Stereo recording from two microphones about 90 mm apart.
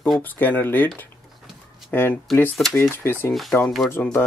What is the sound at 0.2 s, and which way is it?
Speech, 20° left (ahead or behind).